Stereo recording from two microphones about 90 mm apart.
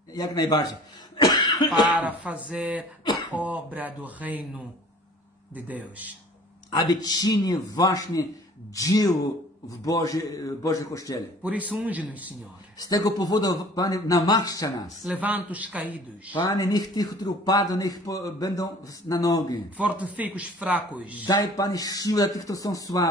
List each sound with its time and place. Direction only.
0.1 s throat clearing: 45° left (ahead or behind)
2.0 s speech: 15° right (ahead or behind)
5.5 s speech: 15° right (ahead or behind)
6.7 s a man's voice: 50° left (ahead or behind)
11.4 s speech: 15° right (ahead or behind)
12.7 s speech: 45° left (ahead or behind)
15.1 s speech: 15° right (ahead or behind)
16.5 s speech: 45° left (ahead or behind)
19.8 s speech: 15° right (ahead or behind)
21.3 s speech: 40° left (ahead or behind)